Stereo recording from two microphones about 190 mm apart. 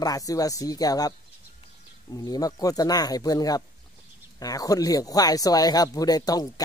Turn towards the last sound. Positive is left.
turn(degrees=20)  # may be behind; listen again after turning